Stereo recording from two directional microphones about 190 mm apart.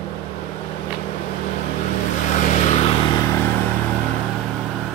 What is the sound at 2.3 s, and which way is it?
Vehicle, 45° left (ahead or behind).